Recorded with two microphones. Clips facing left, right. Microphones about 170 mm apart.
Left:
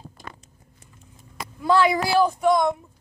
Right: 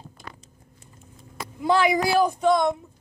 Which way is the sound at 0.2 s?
45° left (ahead or behind).